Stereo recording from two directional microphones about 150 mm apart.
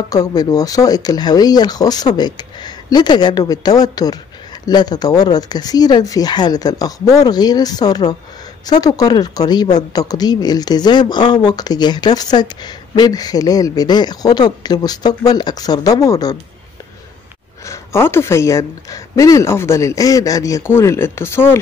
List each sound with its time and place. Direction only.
0.1 s speech: 25° left (ahead or behind)
17.6 s speech: 15° left (ahead or behind)